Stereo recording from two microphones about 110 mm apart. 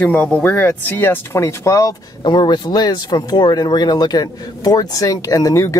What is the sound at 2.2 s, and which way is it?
Speech, 45° left (ahead or behind).